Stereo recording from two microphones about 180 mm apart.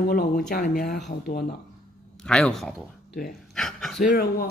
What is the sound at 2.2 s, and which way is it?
Speech, 5° left (ahead or behind).